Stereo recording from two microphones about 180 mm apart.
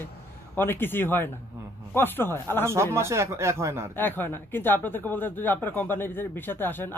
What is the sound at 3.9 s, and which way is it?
Speech, 10° left (ahead or behind).